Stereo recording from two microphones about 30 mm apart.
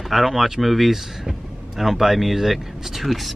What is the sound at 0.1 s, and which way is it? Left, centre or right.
Speech, centre.